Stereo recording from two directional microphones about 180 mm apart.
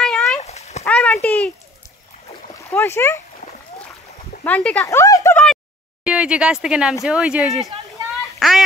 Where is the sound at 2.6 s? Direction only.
15° left (ahead or behind).